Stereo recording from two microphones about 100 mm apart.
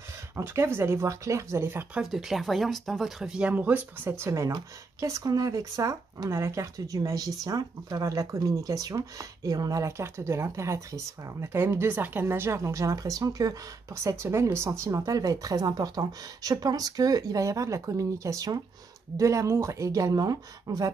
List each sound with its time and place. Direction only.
0.4 s speech: 25° right (ahead or behind)
2.0 s speech: 5° right (ahead or behind); by 20.9 s 40° right (ahead or behind)